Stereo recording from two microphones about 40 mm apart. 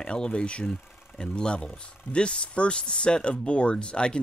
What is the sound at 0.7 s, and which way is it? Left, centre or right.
Engine, left.